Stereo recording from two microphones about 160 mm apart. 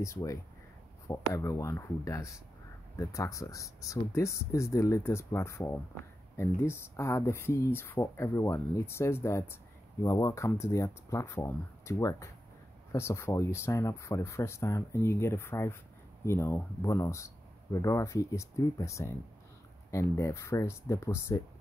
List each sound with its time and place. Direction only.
0.0 s speech: 20° left (ahead or behind)